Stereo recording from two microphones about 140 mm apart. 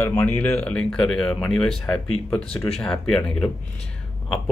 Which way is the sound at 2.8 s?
5° left (ahead or behind).